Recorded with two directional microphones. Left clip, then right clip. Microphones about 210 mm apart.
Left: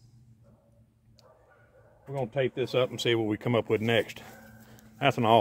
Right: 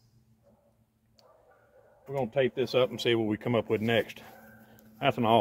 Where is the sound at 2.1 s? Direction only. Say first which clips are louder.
Right 2 dB; 20° left (ahead or behind); by 5.3 s 45° left (ahead or behind).